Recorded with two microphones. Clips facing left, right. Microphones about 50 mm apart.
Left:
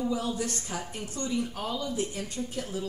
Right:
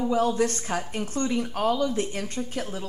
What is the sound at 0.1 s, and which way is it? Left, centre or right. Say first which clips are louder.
Speech: right 8 dB; right.